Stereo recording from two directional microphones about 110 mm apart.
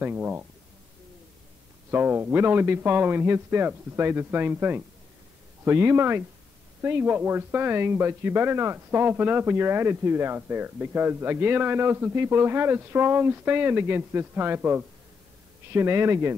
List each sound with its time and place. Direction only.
0.0 s speech: 15° right (ahead or behind)
1.9 s speech: 20° right (ahead or behind)